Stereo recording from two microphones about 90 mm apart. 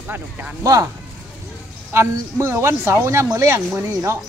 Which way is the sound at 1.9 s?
30° right (ahead or behind).